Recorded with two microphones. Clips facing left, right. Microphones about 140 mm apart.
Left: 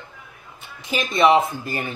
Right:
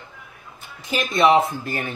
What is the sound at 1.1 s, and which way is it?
Speech, 5° left (ahead or behind).